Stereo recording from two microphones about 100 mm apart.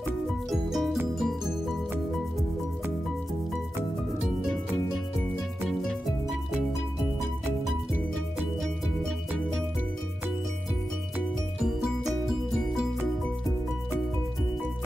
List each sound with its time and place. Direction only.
0.5 s music: centre (ahead or behind)
5.7 s music: 5° left (ahead or behind)